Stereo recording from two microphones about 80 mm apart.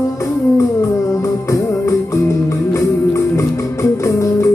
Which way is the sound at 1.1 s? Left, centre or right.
Left.